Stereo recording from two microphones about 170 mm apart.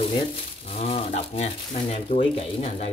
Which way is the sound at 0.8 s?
40° left (ahead or behind).